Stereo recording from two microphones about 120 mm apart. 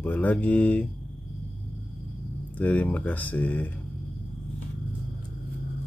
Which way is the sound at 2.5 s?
10° left (ahead or behind).